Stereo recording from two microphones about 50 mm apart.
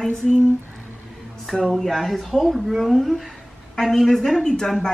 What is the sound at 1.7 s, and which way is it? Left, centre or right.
A woman's voice, centre.